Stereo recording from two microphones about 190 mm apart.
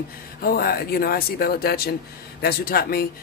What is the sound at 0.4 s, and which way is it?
Speech, 55° left (ahead or behind).